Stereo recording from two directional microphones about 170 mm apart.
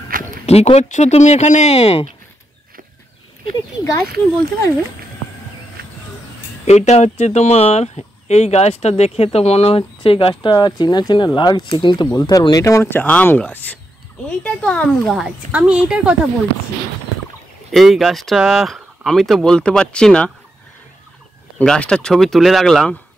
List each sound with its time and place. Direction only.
0.1 s a sound: 55° right (ahead or behind)
0.5 s speech: 40° left (ahead or behind)
3.5 s speech: 20° left (ahead or behind)
5.8 s a sound: 60° right (ahead or behind)
6.6 s speech: 40° left (ahead or behind); by 16.2 s 5° right (ahead or behind)
17.6 s speech: centre (ahead or behind)
21.5 s speech: 5° left (ahead or behind)